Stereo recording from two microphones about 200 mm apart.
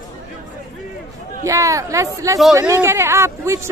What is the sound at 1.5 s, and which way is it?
Speech, 15° right (ahead or behind).